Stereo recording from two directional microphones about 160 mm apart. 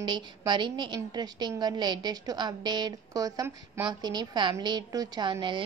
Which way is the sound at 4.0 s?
25° right (ahead or behind).